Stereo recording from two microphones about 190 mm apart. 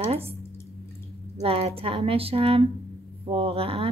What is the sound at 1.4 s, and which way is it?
Speech, 30° right (ahead or behind).